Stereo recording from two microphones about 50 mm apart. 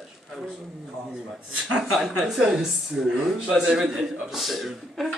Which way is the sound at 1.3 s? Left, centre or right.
Centre.